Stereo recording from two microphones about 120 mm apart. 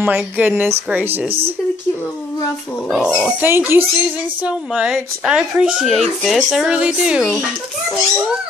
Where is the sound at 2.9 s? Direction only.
5° right (ahead or behind).